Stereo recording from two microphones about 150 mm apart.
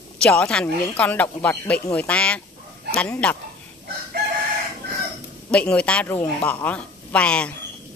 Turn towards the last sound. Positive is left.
turn(degrees=5)  # may be behind; listen again after turning